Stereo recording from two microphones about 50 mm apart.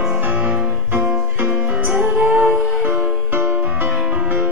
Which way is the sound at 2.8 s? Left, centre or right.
Right.